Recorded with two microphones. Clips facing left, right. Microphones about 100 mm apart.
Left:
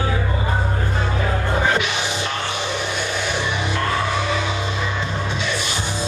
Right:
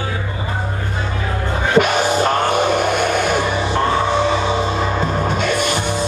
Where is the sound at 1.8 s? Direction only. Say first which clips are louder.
Right 9 dB; 45° right (ahead or behind).